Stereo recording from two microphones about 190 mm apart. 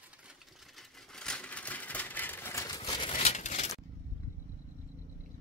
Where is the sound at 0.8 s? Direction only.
5° left (ahead or behind); by 3.1 s 20° left (ahead or behind).